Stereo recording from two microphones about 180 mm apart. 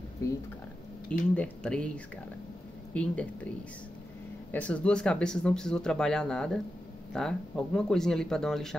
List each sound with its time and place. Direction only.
0.2 s speech: 15° left (ahead or behind)
2.9 s speech: 5° left (ahead or behind)
4.5 s speech: 5° left (ahead or behind)